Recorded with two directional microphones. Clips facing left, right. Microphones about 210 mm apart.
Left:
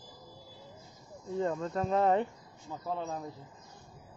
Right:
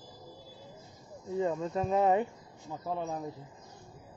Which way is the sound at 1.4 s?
5° right (ahead or behind).